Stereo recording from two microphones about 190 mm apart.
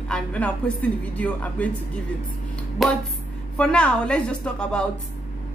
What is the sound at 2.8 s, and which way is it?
Speech, centre (ahead or behind).